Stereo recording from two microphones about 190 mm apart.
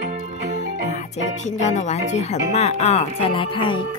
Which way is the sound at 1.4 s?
35° left (ahead or behind).